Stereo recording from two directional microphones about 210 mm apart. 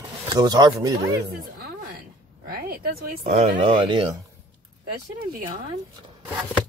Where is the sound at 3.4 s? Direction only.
30° right (ahead or behind).